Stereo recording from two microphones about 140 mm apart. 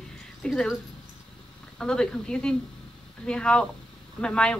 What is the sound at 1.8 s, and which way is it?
A woman's voice, 5° left (ahead or behind).